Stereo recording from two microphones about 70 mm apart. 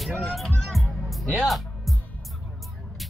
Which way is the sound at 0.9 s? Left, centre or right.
Centre.